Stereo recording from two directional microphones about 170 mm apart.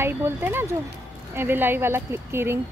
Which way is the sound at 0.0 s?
15° right (ahead or behind).